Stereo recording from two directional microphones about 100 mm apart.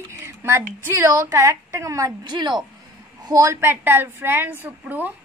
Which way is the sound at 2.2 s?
50° right (ahead or behind).